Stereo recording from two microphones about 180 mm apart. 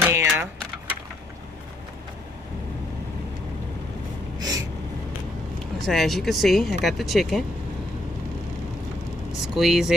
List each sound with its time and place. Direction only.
0.0 s vehicle: 15° right (ahead or behind)
4.4 s a sound: 20° right (ahead or behind)
5.9 s speech: centre (ahead or behind)
9.3 s speech: centre (ahead or behind)